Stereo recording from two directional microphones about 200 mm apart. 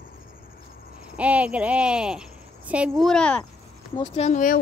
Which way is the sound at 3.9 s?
30° left (ahead or behind).